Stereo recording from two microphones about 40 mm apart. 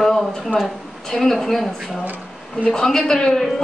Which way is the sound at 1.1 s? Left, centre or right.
Centre.